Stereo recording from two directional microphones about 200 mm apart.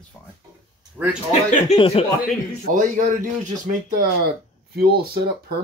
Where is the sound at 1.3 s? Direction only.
30° left (ahead or behind).